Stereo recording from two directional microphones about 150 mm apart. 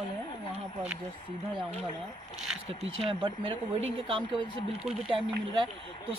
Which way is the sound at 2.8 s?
40° right (ahead or behind).